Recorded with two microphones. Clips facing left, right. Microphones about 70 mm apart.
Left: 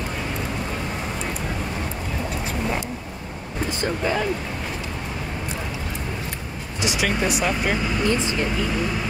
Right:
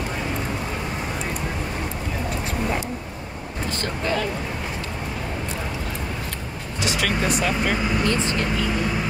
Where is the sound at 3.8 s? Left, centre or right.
Centre.